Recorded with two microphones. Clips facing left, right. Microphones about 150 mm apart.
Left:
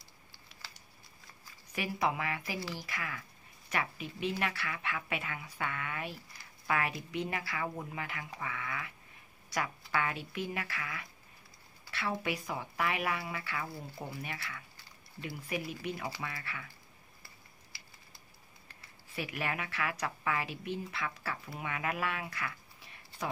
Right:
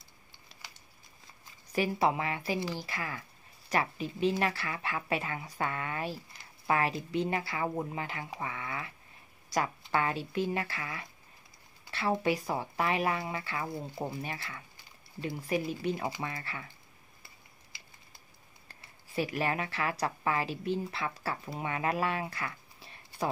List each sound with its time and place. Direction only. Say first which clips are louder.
0.5 s a sound: right 1 dB; 35° right (ahead or behind)
1.7 s a woman's voice: right 5 dB; 30° right (ahead or behind)
19.1 s a woman's voice: right 6 dB; 35° right (ahead or behind)